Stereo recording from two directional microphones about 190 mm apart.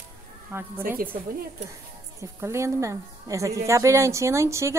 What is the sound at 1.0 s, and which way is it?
Speech, 50° right (ahead or behind).